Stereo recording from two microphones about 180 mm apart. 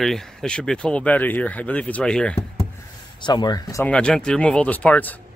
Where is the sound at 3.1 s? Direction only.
25° left (ahead or behind).